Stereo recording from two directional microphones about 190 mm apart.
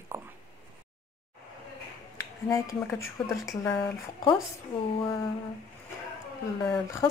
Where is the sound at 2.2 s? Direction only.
15° left (ahead or behind).